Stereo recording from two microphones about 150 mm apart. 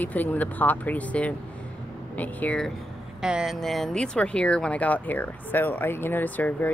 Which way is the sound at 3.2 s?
5° right (ahead or behind).